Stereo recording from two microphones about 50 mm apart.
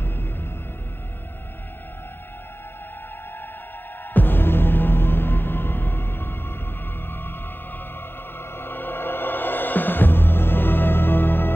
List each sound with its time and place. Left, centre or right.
4.1 s music: left